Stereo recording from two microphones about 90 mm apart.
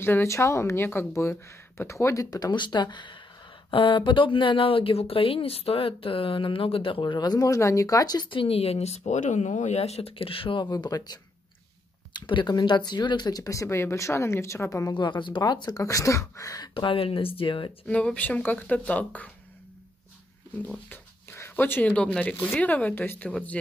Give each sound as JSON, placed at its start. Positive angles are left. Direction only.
{"t": 0.0, "sound": "a woman's voice", "side_deg": 30}
{"t": 2.5, "sound": "speech", "side_deg": 55}
{"t": 3.7, "sound": "speech", "side_deg": 70}
{"t": 8.3, "sound": "speech", "side_deg": 85}
{"t": 10.0, "sound": "speech", "side_deg": 90}
{"t": 10.7, "sound": "speech", "side_deg": 45}
{"t": 12.1, "sound": "a woman's voice", "side_deg": 60}
{"t": 15.0, "sound": "speech", "side_deg": 60}
{"t": 16.7, "sound": "speech", "side_deg": 90}
{"t": 17.8, "sound": "speech", "side_deg": 15}
{"t": 20.6, "sound": "speech", "side_deg": 15}
{"t": 21.3, "sound": "speech", "side_deg": 30}